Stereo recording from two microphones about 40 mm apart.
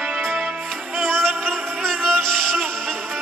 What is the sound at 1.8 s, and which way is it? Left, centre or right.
Music, centre.